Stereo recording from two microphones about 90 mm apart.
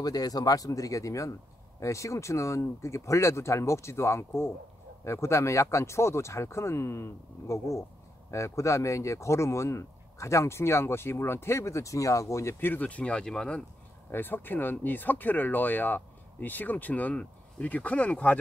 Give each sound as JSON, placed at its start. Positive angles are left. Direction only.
{"t": 0.0, "sound": "speech", "side_deg": 45}
{"t": 12.5, "sound": "speech", "side_deg": 20}
{"t": 14.1, "sound": "speech", "side_deg": 20}